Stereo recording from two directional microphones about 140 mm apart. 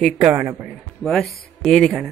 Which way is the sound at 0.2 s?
15° right (ahead or behind).